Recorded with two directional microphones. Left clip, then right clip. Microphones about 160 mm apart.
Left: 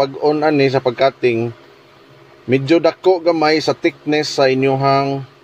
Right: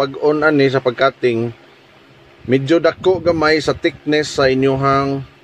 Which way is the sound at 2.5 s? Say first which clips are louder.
Even; 10° right (ahead or behind).